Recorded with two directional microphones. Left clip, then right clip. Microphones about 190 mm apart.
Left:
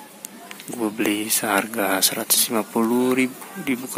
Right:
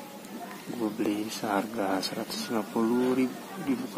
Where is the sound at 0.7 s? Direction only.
20° left (ahead or behind).